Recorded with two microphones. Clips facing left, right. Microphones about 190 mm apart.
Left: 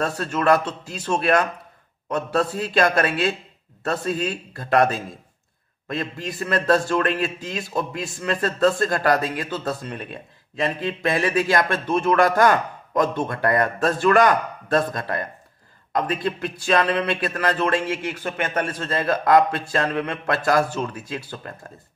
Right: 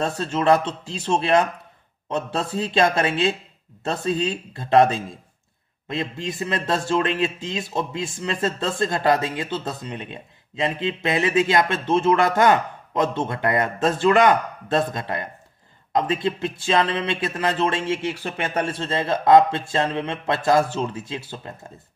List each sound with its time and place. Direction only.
0.0 s a man's voice: 25° right (ahead or behind)